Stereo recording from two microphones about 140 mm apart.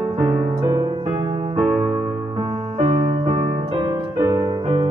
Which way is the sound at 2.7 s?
50° right (ahead or behind).